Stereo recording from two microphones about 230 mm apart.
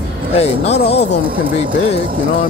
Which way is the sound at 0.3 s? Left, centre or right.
Left.